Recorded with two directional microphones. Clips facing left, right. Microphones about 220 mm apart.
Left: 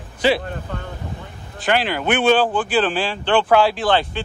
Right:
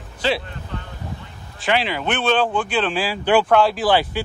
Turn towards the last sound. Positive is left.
turn(degrees=-10)  # may be behind; listen again after turning